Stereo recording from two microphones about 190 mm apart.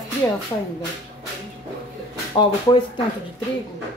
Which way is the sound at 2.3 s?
25° left (ahead or behind).